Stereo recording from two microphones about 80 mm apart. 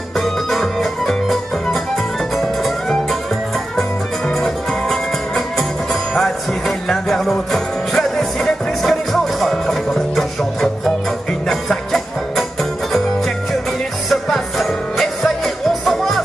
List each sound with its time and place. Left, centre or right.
0.2 s music: centre
4.3 s music: centre
6.9 s music: centre
14.0 s music: centre